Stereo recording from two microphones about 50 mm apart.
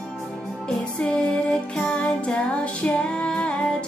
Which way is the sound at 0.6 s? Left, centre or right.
Centre.